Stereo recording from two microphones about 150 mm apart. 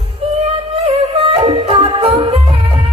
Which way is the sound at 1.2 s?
40° right (ahead or behind).